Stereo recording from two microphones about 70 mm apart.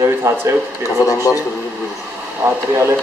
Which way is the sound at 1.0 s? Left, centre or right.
Left.